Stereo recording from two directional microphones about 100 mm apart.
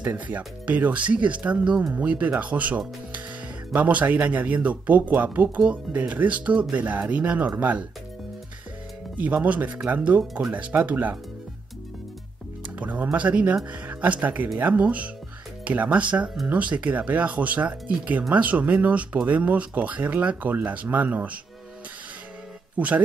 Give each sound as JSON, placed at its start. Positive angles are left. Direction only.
{"t": 0.0, "sound": "speech", "side_deg": -20}
{"t": 9.1, "sound": "speech", "side_deg": -15}
{"t": 12.7, "sound": "speech", "side_deg": -15}
{"t": 22.8, "sound": "speech", "side_deg": -15}